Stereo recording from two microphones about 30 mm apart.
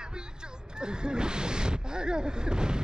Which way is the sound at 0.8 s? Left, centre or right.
Right.